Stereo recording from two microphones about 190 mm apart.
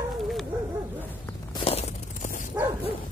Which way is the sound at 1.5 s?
30° left (ahead or behind).